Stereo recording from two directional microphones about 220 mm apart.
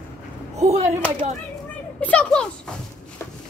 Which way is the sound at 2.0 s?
5° left (ahead or behind).